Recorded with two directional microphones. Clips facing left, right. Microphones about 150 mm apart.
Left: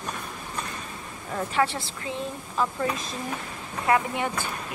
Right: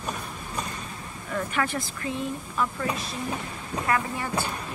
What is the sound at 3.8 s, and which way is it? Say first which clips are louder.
Speech: left 4 dB; 20° left (ahead or behind).